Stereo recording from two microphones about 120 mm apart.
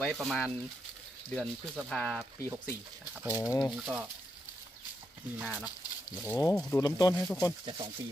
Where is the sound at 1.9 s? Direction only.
5° left (ahead or behind).